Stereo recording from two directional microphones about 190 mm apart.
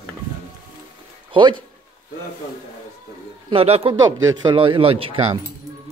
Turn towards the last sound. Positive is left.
turn(degrees=-25)  # may be behind; listen again after turning